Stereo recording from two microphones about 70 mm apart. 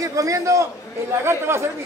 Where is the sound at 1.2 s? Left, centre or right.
Right.